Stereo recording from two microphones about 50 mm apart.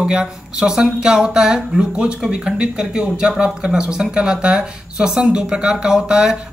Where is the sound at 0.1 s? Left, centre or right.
Centre.